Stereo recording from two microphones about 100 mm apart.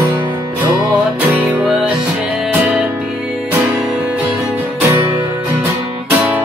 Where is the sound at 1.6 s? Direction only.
5° right (ahead or behind).